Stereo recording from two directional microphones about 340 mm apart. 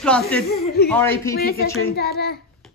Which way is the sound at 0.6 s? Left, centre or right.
Left.